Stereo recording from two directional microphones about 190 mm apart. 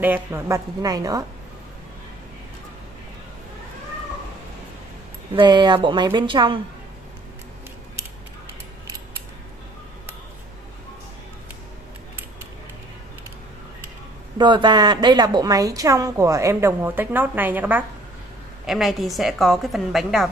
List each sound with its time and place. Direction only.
0.0 s a woman's voice: 10° right (ahead or behind)
5.3 s a woman's voice: 25° right (ahead or behind)
14.4 s a woman's voice: 25° right (ahead or behind); by 20.2 s centre (ahead or behind)